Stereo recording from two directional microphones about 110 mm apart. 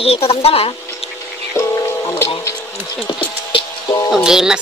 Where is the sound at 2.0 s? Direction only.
30° left (ahead or behind).